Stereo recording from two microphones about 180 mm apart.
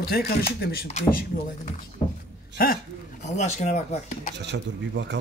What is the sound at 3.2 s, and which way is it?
Speech, 40° left (ahead or behind).